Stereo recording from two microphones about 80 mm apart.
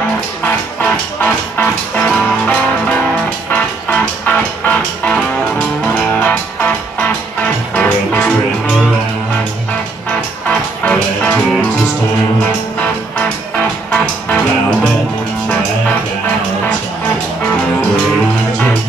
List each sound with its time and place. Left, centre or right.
0.7 s music: centre
13.9 s music: centre